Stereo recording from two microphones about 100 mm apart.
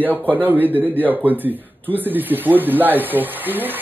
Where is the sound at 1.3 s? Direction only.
20° right (ahead or behind).